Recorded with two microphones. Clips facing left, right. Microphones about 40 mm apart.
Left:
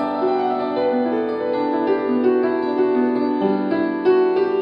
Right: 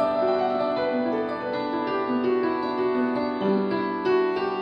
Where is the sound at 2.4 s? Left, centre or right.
Centre.